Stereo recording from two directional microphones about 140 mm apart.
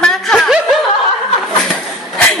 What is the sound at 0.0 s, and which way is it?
Snicker, 5° left (ahead or behind).